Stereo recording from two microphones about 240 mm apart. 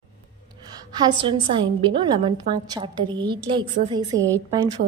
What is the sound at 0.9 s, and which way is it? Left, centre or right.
A woman's voice, centre.